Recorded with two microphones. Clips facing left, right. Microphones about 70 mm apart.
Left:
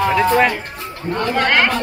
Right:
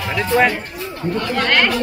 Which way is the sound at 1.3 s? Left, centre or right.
Centre.